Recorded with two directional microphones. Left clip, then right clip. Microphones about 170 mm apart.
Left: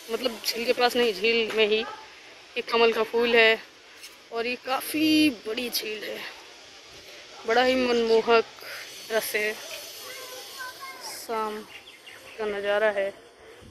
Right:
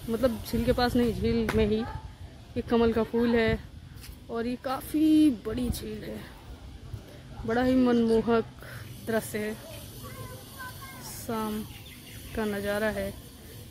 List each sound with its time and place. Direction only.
0.1 s speech: 5° right (ahead or behind)
7.4 s speech: 5° right (ahead or behind)
11.2 s speech: 10° right (ahead or behind)
12.5 s speech: 20° right (ahead or behind)